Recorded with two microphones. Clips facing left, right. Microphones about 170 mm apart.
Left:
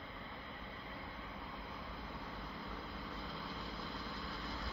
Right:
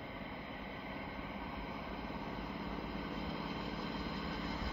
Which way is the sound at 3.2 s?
20° right (ahead or behind).